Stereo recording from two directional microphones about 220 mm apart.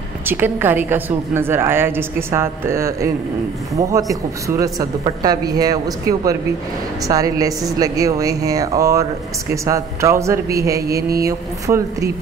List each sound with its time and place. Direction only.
0.3 s a woman's voice: 10° right (ahead or behind)